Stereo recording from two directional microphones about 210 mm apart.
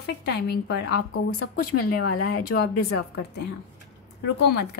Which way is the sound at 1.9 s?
90° left.